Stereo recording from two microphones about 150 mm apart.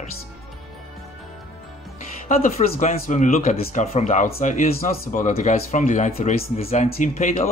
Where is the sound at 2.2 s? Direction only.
55° left (ahead or behind).